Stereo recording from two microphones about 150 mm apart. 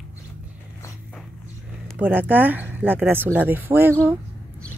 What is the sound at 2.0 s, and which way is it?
Speech, 10° right (ahead or behind).